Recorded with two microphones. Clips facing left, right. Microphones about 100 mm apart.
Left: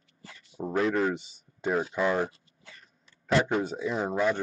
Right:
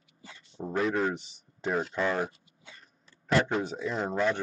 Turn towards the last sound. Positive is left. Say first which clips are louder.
# left 2 dB
turn(degrees=5)  # may be behind; listen again after turning